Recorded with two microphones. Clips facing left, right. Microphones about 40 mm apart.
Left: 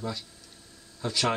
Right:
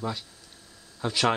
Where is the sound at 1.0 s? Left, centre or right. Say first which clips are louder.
Right 3 dB; centre.